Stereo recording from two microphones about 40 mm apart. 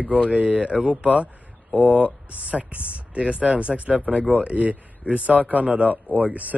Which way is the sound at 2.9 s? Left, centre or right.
Right.